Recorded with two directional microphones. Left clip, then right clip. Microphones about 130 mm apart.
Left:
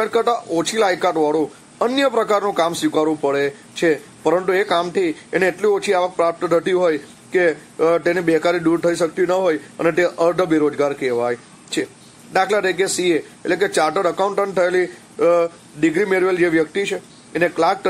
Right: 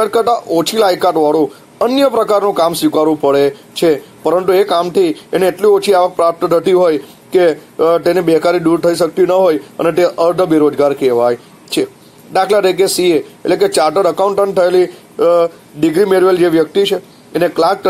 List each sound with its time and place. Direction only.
0.0 s speech: 20° right (ahead or behind)